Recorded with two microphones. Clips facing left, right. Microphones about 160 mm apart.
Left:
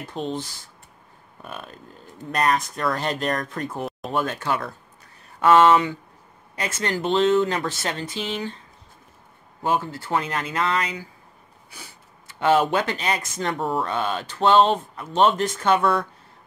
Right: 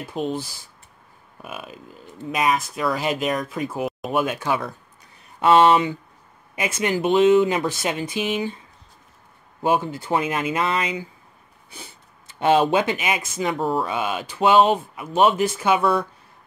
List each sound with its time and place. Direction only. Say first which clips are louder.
0.1 s speech: right 3 dB; 10° right (ahead or behind)
9.6 s speech: right 3 dB; 15° right (ahead or behind)